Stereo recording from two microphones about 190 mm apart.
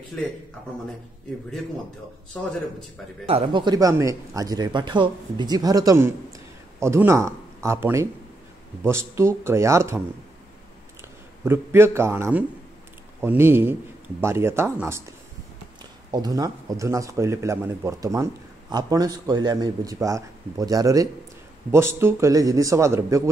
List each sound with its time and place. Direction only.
2.3 s a man's voice: centre (ahead or behind)
3.3 s a man's voice: 30° right (ahead or behind)